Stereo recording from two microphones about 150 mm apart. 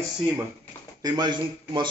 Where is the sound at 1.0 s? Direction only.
25° right (ahead or behind).